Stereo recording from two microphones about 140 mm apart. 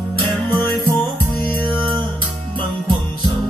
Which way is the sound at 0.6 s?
15° left (ahead or behind).